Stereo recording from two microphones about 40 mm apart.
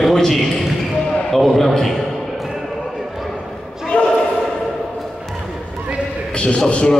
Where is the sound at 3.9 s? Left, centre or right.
Left.